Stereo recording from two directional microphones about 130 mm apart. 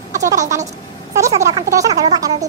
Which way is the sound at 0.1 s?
25° right (ahead or behind).